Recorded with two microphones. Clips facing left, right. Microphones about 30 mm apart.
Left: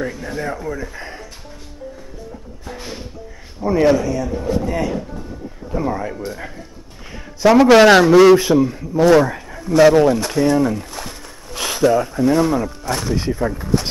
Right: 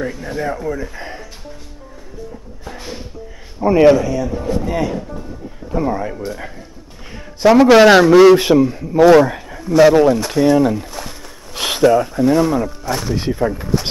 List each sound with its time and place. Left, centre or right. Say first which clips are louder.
0.0 s speech: right 2 dB; centre
2.6 s music: right 1 dB; centre
3.6 s a man's voice: right 5 dB; centre
3.9 s speech: right 2 dB; centre
11.5 s a sound: right 3 dB; centre
11.9 s speech: right 2 dB; centre